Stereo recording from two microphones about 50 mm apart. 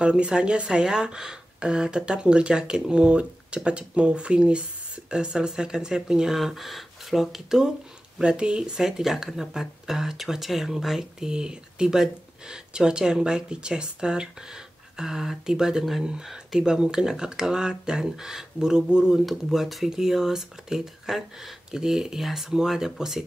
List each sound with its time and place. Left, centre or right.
0.0 s speech: centre
8.2 s speech: centre
19.1 s speech: centre